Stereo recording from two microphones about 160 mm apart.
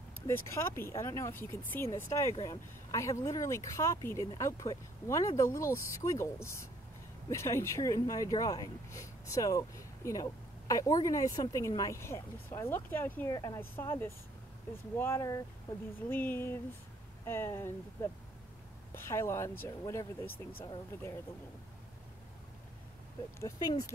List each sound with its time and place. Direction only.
0.3 s speech: 15° left (ahead or behind)